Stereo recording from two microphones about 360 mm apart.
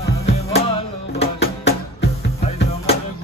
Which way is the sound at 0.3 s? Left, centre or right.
Left.